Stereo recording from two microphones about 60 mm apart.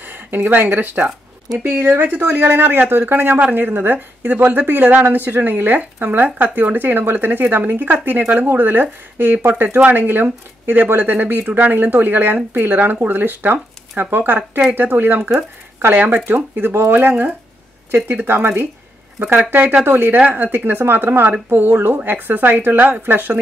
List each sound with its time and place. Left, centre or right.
0.0 s a woman's voice: right
9.8 s a woman's voice: right
19.9 s a woman's voice: right